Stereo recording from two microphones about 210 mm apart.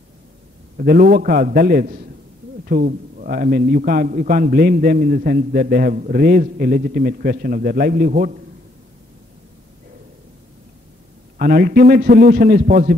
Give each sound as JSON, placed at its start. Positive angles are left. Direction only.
{"t": 0.7, "sound": "a man's voice", "side_deg": -45}
{"t": 11.3, "sound": "a man's voice", "side_deg": -40}